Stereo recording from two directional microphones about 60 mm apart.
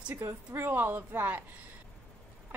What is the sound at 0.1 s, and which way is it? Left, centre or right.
Speech, right.